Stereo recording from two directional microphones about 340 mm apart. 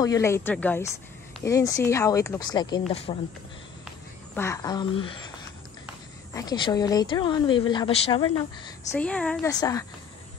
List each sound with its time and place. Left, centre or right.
0.0 s speech: centre
4.4 s speech: centre
6.3 s speech: centre
8.6 s speech: centre